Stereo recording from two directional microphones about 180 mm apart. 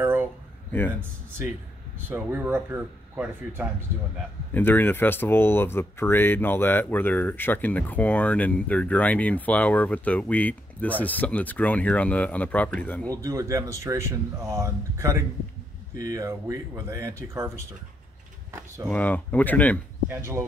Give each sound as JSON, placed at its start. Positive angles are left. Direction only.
{"t": 0.0, "sound": "a sound", "side_deg": -10}
{"t": 0.7, "sound": "a man's voice", "side_deg": 10}
{"t": 2.0, "sound": "speech", "side_deg": -10}
{"t": 4.6, "sound": "speech", "side_deg": 10}
{"t": 13.1, "sound": "speech", "side_deg": -20}
{"t": 18.9, "sound": "speech", "side_deg": 10}
{"t": 20.1, "sound": "speech", "side_deg": -15}